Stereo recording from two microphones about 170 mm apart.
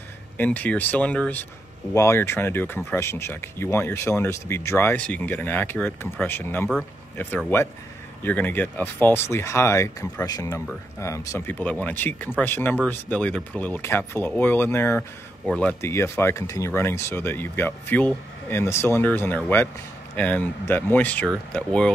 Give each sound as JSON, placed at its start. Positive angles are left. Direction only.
{"t": 0.4, "sound": "speech", "side_deg": 10}
{"t": 8.2, "sound": "speech", "side_deg": 10}
{"t": 15.4, "sound": "speech", "side_deg": 5}
{"t": 15.8, "sound": "speech", "side_deg": 15}